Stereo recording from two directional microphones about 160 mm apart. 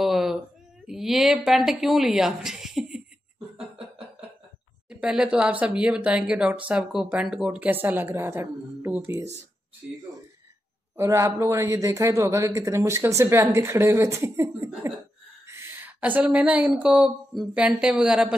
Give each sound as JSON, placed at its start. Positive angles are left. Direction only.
{"t": 0.0, "sound": "a sound", "side_deg": 0}
{"t": 3.5, "sound": "a sound", "side_deg": -40}
{"t": 4.8, "sound": "speech", "side_deg": -5}
{"t": 11.0, "sound": "a man's voice", "side_deg": -20}
{"t": 14.7, "sound": "laughter", "side_deg": -15}
{"t": 15.4, "sound": "speech", "side_deg": -15}